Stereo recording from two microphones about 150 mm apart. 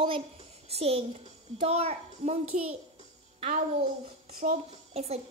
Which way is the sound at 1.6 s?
45° right (ahead or behind).